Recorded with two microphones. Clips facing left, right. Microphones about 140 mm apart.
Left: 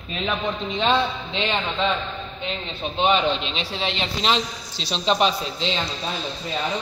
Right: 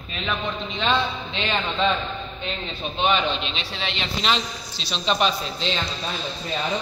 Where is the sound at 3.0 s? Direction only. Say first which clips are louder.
Left 2 dB; 30° left (ahead or behind).